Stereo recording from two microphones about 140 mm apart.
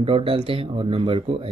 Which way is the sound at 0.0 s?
40° right (ahead or behind).